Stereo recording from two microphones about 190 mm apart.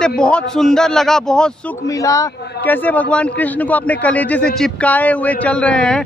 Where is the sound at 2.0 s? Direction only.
15° left (ahead or behind).